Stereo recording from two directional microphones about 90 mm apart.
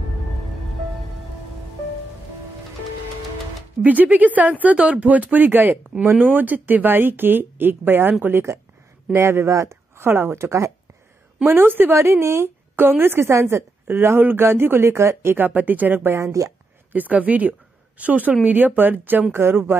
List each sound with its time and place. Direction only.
3.8 s speech: 20° right (ahead or behind); by 16.5 s 35° right (ahead or behind)
16.9 s speech: 20° right (ahead or behind)